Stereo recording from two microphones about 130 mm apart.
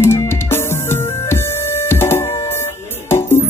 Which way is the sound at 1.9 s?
20° left (ahead or behind).